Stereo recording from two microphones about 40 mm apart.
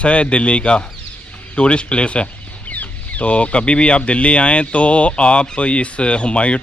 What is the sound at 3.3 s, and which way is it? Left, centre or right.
Speech, left.